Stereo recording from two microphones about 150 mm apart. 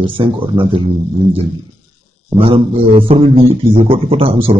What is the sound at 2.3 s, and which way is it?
Speech, 40° right (ahead or behind).